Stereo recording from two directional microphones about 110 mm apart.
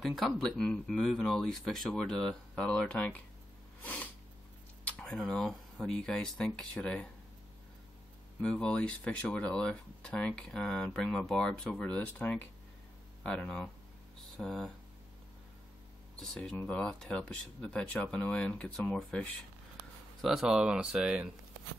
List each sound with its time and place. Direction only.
0.0 s speech: centre (ahead or behind)
3.8 s snort: 15° left (ahead or behind)
4.8 s speech: 10° left (ahead or behind)
8.4 s speech: 10° left (ahead or behind)
16.2 s speech: 5° left (ahead or behind)